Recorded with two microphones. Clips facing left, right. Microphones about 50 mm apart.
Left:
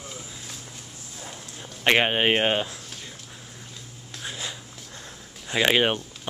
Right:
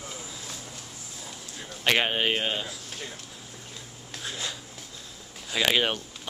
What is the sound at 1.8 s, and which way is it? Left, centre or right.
Speech, left.